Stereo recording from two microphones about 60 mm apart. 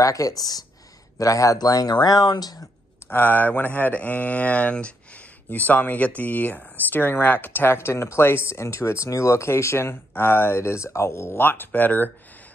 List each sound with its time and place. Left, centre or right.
0.0 s speech: left
1.1 s speech: left
3.1 s speech: left